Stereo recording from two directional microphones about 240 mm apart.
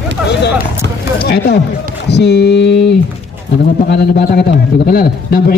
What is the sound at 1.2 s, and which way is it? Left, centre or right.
A man's voice, left.